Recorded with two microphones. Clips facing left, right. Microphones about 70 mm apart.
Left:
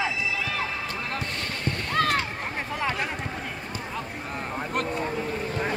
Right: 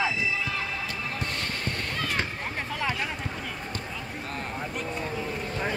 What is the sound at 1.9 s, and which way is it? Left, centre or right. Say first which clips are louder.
Splash: left 11 dB; left.